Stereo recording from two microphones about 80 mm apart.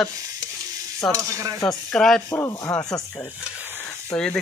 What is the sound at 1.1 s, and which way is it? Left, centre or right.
Speech, right.